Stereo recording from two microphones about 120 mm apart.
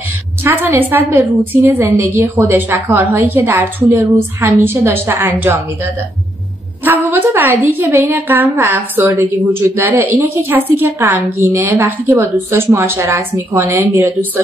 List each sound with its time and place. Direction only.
0.4 s a woman's voice: 20° right (ahead or behind)
6.8 s a woman's voice: 15° right (ahead or behind)